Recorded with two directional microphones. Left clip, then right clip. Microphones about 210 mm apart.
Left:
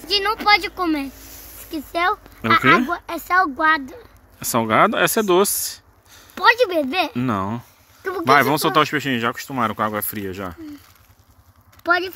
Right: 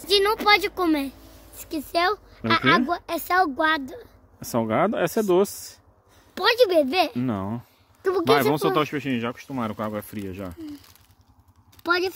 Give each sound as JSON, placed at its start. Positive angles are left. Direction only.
{"t": 0.1, "sound": "speech", "side_deg": -50}
{"t": 1.7, "sound": "speech", "side_deg": -30}
{"t": 4.4, "sound": "speech", "side_deg": -10}
{"t": 6.3, "sound": "speech", "side_deg": -25}
{"t": 7.2, "sound": "speech", "side_deg": 0}
{"t": 8.0, "sound": "speech", "side_deg": -30}
{"t": 8.3, "sound": "speech", "side_deg": -10}